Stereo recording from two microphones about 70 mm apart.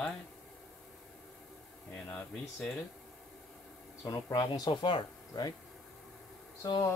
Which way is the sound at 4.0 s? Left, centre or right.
Left.